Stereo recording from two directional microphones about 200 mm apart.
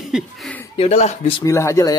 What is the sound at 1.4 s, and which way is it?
Speech, 15° left (ahead or behind).